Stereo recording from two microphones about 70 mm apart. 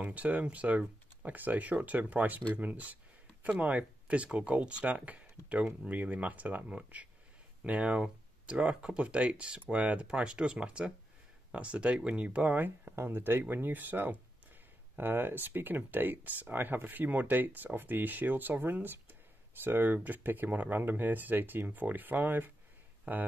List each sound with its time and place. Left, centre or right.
0.0 s speech: right